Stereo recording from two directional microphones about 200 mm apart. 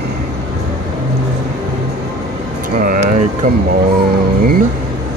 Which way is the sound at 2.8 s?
45° right (ahead or behind).